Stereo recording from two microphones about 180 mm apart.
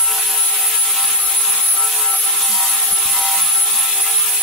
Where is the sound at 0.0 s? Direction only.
Centre (ahead or behind).